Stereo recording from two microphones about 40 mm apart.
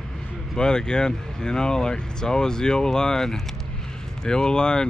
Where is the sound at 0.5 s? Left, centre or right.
Centre.